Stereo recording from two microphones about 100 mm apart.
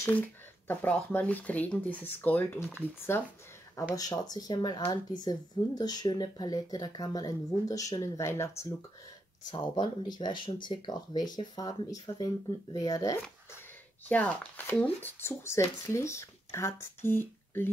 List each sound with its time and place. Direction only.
0.1 s speech: 15° left (ahead or behind)
3.9 s speech: 40° left (ahead or behind)
9.5 s speech: 45° left (ahead or behind)
14.0 s speech: 15° left (ahead or behind)